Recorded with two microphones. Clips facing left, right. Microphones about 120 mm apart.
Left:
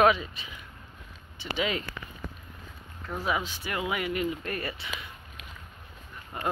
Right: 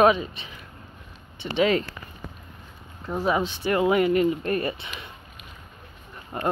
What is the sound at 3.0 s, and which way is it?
Speech, 35° right (ahead or behind).